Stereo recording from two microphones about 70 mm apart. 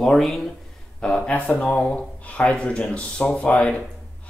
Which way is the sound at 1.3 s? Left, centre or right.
Left.